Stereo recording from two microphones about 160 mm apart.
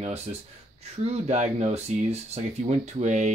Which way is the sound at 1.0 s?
40° right (ahead or behind).